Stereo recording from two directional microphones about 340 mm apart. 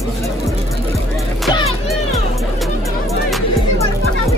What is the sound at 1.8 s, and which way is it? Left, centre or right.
Music, centre.